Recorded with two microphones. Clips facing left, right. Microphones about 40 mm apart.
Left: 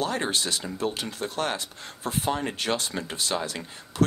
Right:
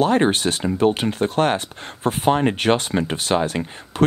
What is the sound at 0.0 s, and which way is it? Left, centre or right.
Speech, right.